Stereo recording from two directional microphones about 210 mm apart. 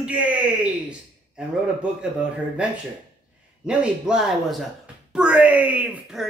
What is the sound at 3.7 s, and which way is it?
A man's voice, 5° right (ahead or behind).